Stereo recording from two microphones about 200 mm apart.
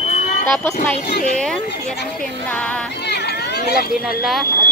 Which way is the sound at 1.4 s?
5° left (ahead or behind).